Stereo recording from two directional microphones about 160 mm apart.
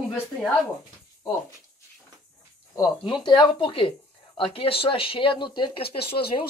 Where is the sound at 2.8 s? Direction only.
30° left (ahead or behind).